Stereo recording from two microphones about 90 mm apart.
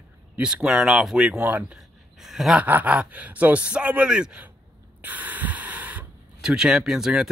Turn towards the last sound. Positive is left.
turn(degrees=-5)  # may be behind; listen again after turning